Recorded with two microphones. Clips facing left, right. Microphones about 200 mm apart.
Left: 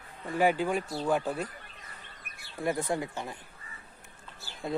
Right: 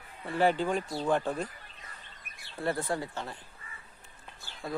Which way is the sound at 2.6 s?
15° left (ahead or behind).